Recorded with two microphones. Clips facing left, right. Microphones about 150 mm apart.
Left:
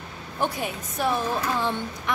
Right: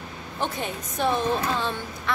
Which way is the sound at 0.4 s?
10° left (ahead or behind).